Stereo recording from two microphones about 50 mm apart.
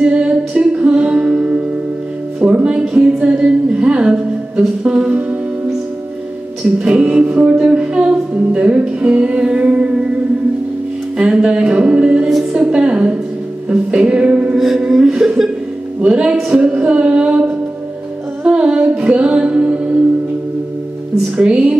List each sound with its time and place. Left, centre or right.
0.0 s music: right
2.4 s music: right
2.9 s music: right
7.0 s music: right
7.5 s music: centre
11.1 s music: centre
14.9 s chuckle: centre
16.0 s music: centre
21.4 s music: right